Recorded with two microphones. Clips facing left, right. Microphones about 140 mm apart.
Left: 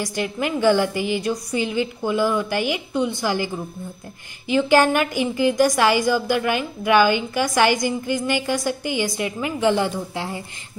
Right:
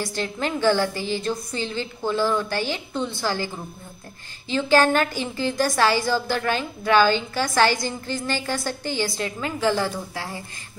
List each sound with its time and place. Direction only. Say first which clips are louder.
0.0 s a woman's voice: left 2 dB; 15° left (ahead or behind)